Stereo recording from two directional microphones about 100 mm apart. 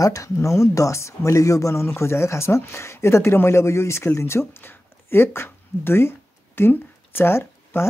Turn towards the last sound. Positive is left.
turn(degrees=25)  # may be behind; listen again after turning